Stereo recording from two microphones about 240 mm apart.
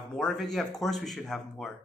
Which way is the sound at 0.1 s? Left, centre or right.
Centre.